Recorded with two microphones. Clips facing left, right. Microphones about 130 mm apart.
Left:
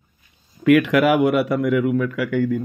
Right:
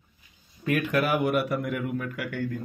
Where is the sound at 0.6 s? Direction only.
90° left.